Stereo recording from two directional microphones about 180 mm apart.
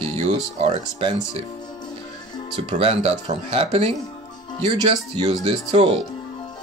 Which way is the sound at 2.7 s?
35° right (ahead or behind).